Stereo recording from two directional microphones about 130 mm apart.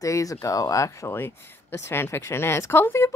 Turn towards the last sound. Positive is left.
turn(degrees=20)  # may be behind; listen again after turning